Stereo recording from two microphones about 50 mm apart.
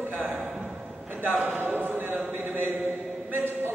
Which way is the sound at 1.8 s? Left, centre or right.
Right.